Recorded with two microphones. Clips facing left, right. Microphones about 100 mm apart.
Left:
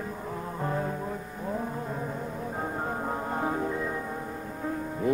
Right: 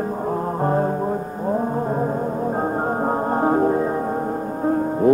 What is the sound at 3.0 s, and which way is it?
Music, 45° right (ahead or behind).